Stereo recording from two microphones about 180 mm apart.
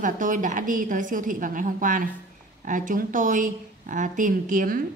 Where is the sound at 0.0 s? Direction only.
45° right (ahead or behind).